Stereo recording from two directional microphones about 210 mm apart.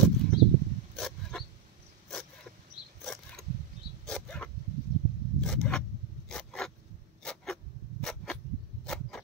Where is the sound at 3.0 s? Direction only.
Centre (ahead or behind).